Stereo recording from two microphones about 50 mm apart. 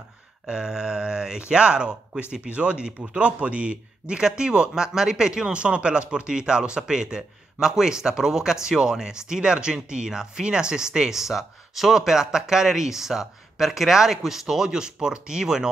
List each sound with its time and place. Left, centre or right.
0.5 s a man's voice: centre